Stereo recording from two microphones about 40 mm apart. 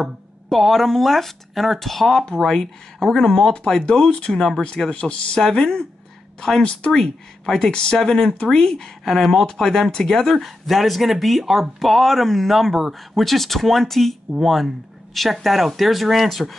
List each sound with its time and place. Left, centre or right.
0.0 s speech: centre
2.2 s speech: centre
6.6 s speech: left
6.9 s speech: centre
8.0 s speech: centre
8.3 s speech: centre